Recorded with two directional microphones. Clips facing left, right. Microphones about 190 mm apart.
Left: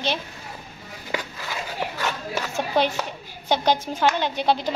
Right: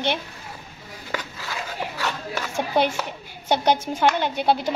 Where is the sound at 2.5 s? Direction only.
15° right (ahead or behind).